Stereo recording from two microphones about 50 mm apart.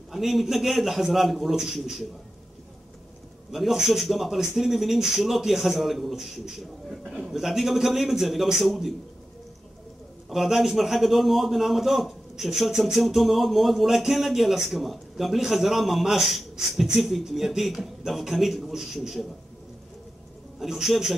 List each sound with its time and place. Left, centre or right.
0.1 s a man's voice: centre
3.5 s a man's voice: centre
10.3 s a man's voice: centre
20.5 s a man's voice: centre